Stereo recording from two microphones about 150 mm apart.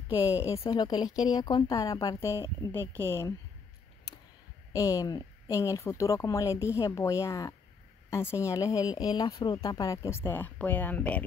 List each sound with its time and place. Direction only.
0.2 s speech: 20° left (ahead or behind)
4.7 s speech: 20° left (ahead or behind)